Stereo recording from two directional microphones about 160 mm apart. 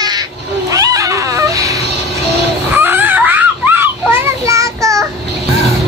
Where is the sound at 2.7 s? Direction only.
15° right (ahead or behind).